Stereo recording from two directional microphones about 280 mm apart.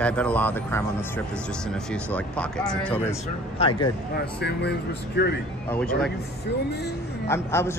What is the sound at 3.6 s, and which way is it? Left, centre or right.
Speech, left.